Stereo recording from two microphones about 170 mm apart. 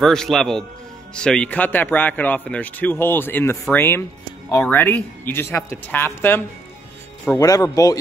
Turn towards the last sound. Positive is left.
turn(degrees=20)  # may be behind; listen again after turning